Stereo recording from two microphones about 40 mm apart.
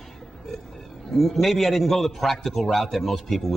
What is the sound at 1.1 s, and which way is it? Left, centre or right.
A man's voice, centre.